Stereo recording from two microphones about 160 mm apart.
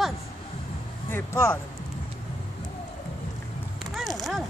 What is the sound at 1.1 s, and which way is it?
Speech, 15° left (ahead or behind).